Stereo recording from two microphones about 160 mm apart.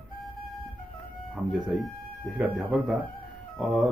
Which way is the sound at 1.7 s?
Centre (ahead or behind).